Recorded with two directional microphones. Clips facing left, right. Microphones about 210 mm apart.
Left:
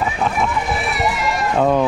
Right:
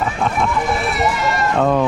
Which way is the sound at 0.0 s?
Centre (ahead or behind).